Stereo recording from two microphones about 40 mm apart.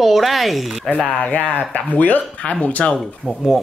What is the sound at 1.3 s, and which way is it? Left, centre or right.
Speech, left.